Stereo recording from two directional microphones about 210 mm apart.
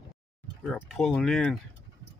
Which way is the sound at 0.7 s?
Centre (ahead or behind).